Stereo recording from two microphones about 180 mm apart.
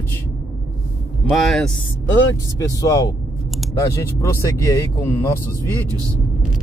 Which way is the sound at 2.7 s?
20° left (ahead or behind).